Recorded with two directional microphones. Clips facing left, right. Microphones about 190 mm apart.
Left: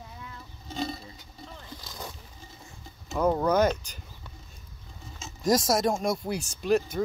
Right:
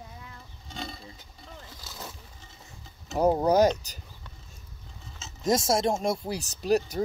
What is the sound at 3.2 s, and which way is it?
Speech, 35° right (ahead or behind).